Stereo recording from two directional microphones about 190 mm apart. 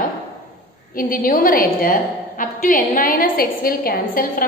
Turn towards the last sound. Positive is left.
turn(degrees=50)  # may be behind; listen again after turning